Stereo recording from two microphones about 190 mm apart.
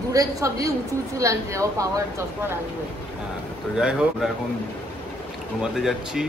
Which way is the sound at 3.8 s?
5° right (ahead or behind).